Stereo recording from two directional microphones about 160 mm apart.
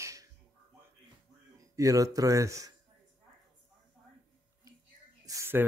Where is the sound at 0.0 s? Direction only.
20° right (ahead or behind).